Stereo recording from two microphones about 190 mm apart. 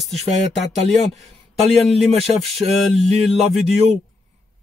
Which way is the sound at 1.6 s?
Centre (ahead or behind).